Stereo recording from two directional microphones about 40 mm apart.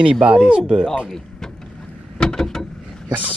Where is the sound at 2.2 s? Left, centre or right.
Centre.